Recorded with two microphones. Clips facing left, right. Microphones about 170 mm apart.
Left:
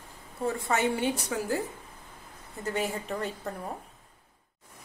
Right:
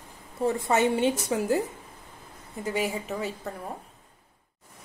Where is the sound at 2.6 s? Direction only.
10° right (ahead or behind).